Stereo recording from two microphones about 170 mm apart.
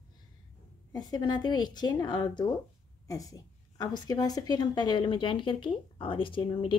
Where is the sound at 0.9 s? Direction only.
25° left (ahead or behind).